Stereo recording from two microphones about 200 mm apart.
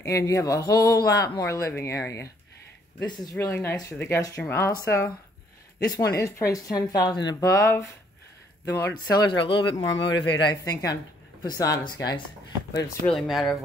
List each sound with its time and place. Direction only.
0.0 s speech: 15° left (ahead or behind)
6.1 s speech: 15° left (ahead or behind)
9.9 s speech: 65° left (ahead or behind)
10.4 s speech: 20° left (ahead or behind)
13.0 s speech: centre (ahead or behind)